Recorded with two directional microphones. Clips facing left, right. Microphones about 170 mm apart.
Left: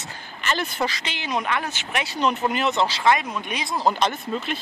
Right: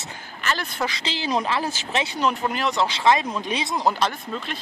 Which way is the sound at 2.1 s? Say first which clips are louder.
Left 4 dB; centre (ahead or behind).